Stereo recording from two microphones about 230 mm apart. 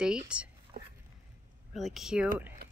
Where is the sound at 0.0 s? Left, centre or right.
Centre.